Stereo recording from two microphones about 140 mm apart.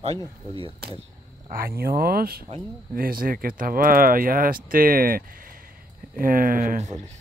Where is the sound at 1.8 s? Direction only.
90° right; by 7.0 s 60° right (ahead or behind).